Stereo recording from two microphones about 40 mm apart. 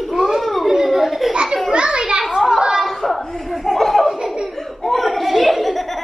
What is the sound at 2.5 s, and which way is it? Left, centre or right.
Chatter, centre.